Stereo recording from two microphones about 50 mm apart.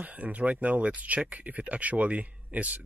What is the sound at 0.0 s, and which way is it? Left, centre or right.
Speech, right.